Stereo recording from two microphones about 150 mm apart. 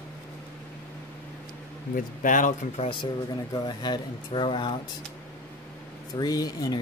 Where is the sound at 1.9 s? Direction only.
60° left (ahead or behind).